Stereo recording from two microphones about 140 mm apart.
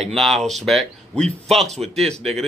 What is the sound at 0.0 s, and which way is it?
Speech, centre (ahead or behind).